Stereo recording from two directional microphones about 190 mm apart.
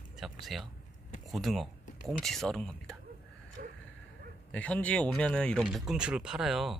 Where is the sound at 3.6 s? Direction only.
45° right (ahead or behind).